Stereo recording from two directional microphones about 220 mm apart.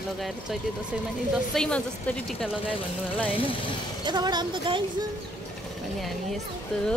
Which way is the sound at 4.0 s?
20° right (ahead or behind).